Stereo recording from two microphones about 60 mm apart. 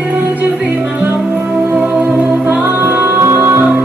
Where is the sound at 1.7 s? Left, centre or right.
Centre.